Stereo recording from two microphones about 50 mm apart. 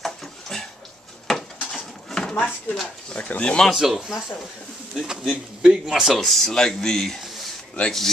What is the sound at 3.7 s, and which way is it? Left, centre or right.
Speech, centre.